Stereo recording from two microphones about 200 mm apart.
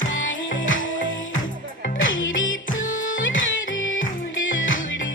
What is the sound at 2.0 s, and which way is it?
Music, 70° left (ahead or behind).